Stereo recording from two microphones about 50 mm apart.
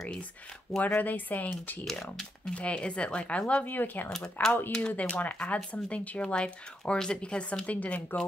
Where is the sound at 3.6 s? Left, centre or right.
Left.